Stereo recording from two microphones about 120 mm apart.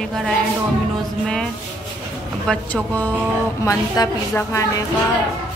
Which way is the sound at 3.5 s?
30° left (ahead or behind).